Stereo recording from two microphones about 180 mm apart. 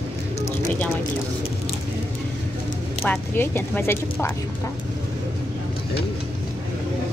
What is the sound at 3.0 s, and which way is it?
Speech, 10° left (ahead or behind).